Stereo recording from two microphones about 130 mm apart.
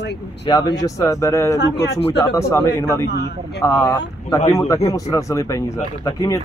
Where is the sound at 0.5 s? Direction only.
30° left (ahead or behind).